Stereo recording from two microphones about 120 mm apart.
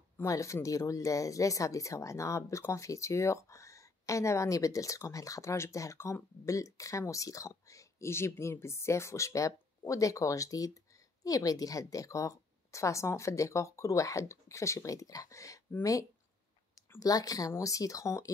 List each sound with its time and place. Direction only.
0.2 s speech: 25° left (ahead or behind)